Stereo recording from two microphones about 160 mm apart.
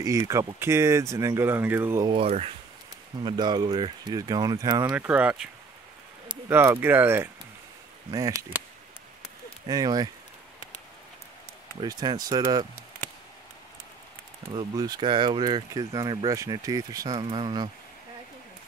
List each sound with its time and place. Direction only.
0.3 s speech: 20° right (ahead or behind)
2.0 s speech: 40° right (ahead or behind)
3.3 s speech: 25° right (ahead or behind)
4.9 s speech: 10° right (ahead or behind)
6.5 s speech: 15° right (ahead or behind)
9.7 s speech: 25° right (ahead or behind)
11.8 s speech: 25° right (ahead or behind)
14.5 s speech: 25° right (ahead or behind)